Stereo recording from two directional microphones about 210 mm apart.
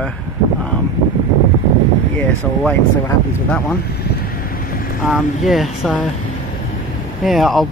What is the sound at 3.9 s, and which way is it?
Vehicle, 50° left (ahead or behind).